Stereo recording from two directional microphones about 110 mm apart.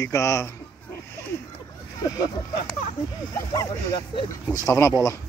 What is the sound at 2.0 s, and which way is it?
Speech, 35° left (ahead or behind).